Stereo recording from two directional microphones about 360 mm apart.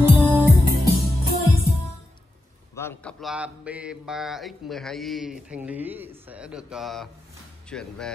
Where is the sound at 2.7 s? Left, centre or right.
Centre.